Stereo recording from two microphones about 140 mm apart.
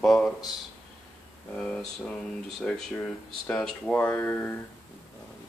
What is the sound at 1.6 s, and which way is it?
Speech, 10° left (ahead or behind).